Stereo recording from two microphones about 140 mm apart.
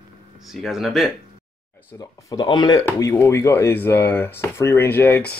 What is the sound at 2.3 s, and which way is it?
Speech, 30° left (ahead or behind).